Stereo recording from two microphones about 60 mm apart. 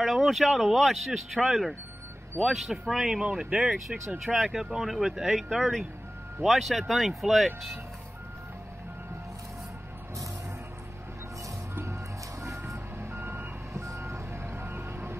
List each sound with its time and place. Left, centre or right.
0.0 s speech: centre
3.3 s speech: centre
3.5 s speech: centre
12.4 s reversing beeps: right
13.7 s reversing beeps: right